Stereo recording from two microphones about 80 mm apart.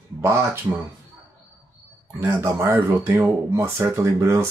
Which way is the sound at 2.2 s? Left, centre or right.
Right.